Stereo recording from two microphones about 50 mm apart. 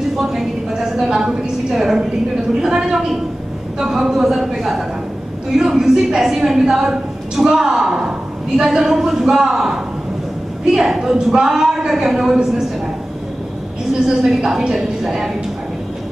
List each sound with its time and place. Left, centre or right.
0.2 s a woman's voice: centre
14.0 s a woman's voice: centre